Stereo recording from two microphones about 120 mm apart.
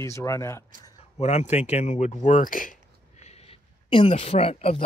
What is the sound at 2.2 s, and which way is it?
Speech, 90° left.